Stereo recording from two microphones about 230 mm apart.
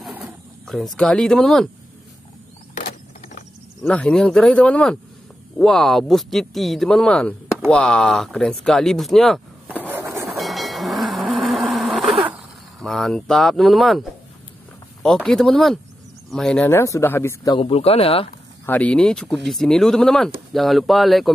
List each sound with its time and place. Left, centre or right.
0.0 s a sound: centre
2.8 s a sound: left
3.8 s speech: centre
10.3 s vehicle: centre
12.8 s speech: centre
15.0 s speech: centre
17.6 s speech: left
18.7 s speech: centre